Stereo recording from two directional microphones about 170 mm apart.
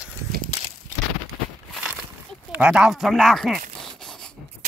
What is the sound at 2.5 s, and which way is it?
Speech, 5° right (ahead or behind).